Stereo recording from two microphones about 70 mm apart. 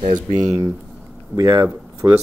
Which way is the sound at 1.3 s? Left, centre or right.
Right.